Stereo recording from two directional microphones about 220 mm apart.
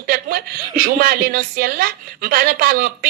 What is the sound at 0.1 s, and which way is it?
Speech, 40° right (ahead or behind).